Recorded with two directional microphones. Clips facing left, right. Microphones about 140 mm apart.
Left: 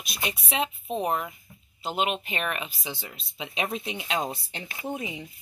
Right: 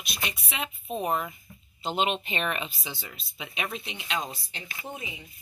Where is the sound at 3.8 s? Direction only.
45° left (ahead or behind).